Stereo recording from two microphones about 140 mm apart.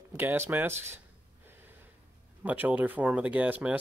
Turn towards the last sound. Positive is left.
turn(degrees=-10)  # may be behind; listen again after turning